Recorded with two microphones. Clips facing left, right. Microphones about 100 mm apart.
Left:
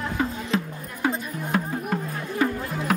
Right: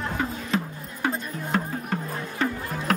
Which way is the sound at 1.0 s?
5° left (ahead or behind).